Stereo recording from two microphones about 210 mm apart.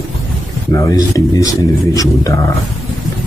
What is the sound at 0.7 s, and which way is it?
Speech, 15° left (ahead or behind).